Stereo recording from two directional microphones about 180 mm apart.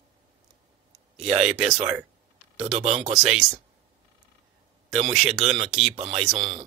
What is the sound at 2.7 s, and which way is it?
Speech, 35° right (ahead or behind).